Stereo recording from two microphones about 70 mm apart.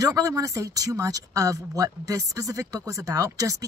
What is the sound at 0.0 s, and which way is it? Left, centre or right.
Speech, right.